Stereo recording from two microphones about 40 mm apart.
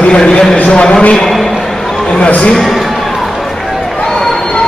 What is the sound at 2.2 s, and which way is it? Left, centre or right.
Speech, left.